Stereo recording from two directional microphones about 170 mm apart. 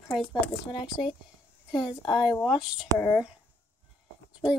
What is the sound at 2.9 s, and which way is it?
Speech, 20° right (ahead or behind).